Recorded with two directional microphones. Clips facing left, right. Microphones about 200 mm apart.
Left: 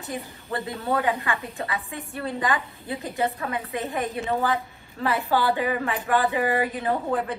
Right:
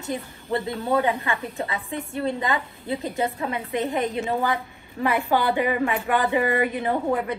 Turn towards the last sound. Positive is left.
turn(degrees=-20)  # may be behind; listen again after turning